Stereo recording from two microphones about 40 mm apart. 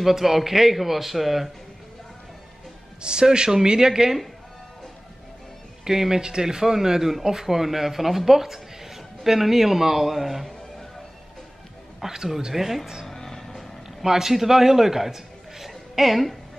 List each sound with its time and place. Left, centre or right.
0.0 s a man's voice: centre
3.0 s speech: right
5.9 s speech: centre
12.0 s speech: centre
13.0 s music: centre
14.0 s a man's voice: centre